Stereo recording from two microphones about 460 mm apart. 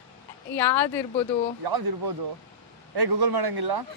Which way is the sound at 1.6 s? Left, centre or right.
Right.